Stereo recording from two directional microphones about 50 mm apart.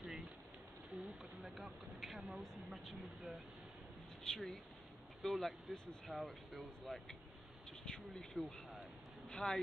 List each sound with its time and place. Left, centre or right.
1.0 s a sound: centre
2.4 s speech: centre
4.2 s speech: centre
7.8 s speech: centre